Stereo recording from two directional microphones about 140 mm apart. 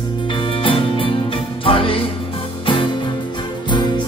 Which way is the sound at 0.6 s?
40° left (ahead or behind).